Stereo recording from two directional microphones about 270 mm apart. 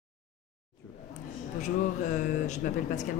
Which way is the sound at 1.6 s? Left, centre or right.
Left.